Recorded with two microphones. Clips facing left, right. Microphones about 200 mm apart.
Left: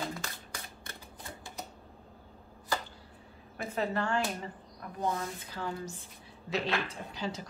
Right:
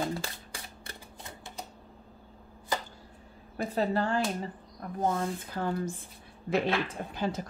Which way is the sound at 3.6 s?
35° right (ahead or behind).